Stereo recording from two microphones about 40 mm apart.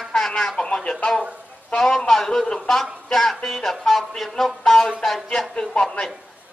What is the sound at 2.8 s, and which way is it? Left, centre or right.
Music, centre.